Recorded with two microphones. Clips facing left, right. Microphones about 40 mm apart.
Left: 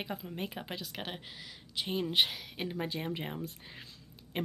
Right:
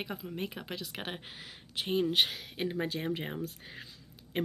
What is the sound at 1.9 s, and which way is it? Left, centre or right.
A woman's voice, centre.